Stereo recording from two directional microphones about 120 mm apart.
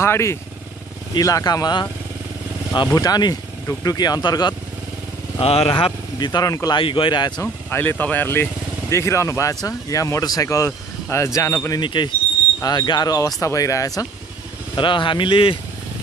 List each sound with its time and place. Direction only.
0.0 s speech: 20° left (ahead or behind); by 4.6 s 35° left (ahead or behind)
5.4 s speech: 55° left (ahead or behind); by 6.8 s 30° left (ahead or behind)
6.8 s speech: 45° left (ahead or behind)
7.7 s speech: 15° left (ahead or behind)
11.8 s speech: 40° left (ahead or behind)
14.8 s speech: 45° left (ahead or behind)